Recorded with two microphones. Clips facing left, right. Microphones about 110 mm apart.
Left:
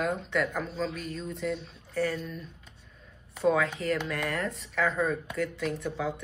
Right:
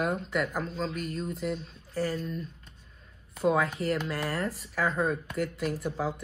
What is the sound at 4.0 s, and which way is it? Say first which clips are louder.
Speech: even; 30° right (ahead or behind).